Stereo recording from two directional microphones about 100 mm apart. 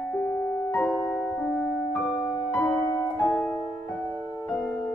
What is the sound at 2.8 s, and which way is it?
Music, 20° left (ahead or behind).